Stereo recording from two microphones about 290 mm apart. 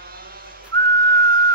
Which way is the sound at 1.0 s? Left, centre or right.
Right.